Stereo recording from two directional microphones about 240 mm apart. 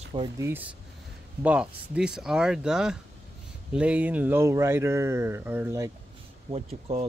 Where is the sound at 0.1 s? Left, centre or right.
Right.